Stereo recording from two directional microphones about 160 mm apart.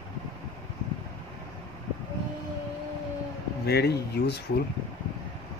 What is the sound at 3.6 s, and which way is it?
Speech, 90° left.